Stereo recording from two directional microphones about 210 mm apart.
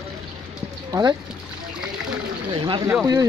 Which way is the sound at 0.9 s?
20° right (ahead or behind).